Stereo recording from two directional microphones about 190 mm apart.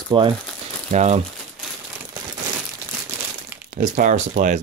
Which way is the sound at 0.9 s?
35° right (ahead or behind).